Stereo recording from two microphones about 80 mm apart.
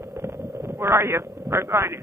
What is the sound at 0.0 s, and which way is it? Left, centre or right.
Vehicle, right.